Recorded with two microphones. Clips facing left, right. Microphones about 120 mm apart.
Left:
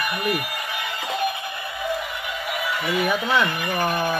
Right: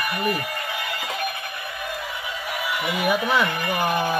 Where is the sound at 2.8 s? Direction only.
15° right (ahead or behind).